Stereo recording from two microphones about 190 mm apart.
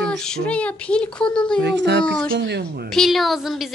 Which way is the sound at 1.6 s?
65° right (ahead or behind).